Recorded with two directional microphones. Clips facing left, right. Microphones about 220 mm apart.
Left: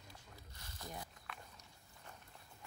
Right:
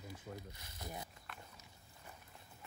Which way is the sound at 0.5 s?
20° right (ahead or behind).